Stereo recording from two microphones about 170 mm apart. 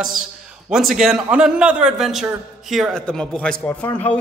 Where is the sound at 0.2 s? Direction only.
5° right (ahead or behind).